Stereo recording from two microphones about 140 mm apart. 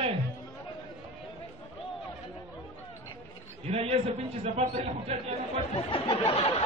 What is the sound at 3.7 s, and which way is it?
A man's voice, 45° right (ahead or behind).